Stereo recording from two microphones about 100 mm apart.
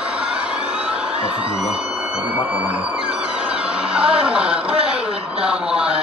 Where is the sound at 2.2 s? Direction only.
20° right (ahead or behind).